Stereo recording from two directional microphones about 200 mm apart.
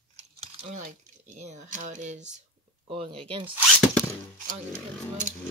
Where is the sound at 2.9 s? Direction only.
25° right (ahead or behind).